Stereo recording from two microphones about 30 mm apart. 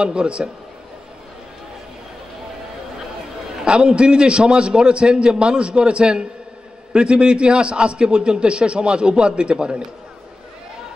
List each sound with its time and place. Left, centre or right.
0.0 s a man's voice: right
3.6 s a man's voice: right